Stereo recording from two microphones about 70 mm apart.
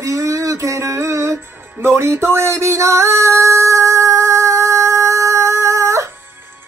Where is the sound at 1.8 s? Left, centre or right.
Right.